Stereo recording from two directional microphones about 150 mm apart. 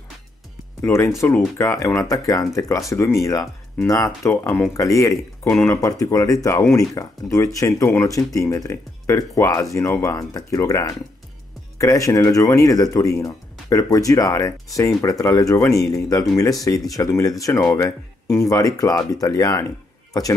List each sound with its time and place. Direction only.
0.8 s speech: 20° left (ahead or behind)